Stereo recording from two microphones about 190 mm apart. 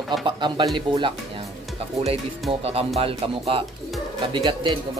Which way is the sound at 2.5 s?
30° right (ahead or behind).